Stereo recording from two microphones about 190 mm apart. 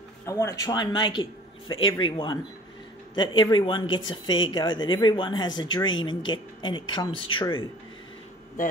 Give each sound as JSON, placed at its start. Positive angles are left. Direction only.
{"t": 0.2, "sound": "speech", "side_deg": 15}